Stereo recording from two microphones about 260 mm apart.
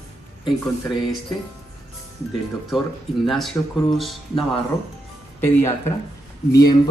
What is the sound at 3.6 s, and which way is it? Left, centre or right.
Speech, centre.